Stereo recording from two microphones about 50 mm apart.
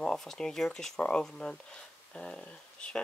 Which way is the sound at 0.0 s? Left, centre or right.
Centre.